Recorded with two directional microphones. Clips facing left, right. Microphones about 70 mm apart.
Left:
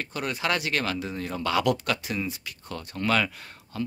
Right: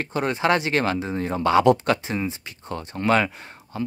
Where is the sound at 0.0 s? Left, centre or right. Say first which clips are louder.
Right 7 dB; right.